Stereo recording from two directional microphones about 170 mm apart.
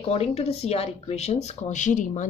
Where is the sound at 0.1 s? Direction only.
40° left (ahead or behind).